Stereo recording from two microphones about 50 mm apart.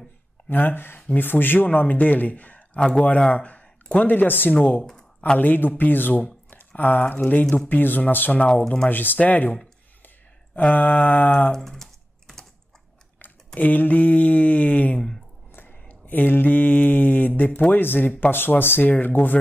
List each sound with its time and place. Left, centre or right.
0.5 s a man's voice: left
2.8 s speech: centre
3.2 s a man's voice: left
11.5 s typing: centre
13.6 s a man's voice: left
15.5 s a sound: left
17.4 s a man's voice: left